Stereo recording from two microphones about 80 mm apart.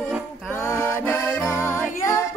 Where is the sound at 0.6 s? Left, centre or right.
Left.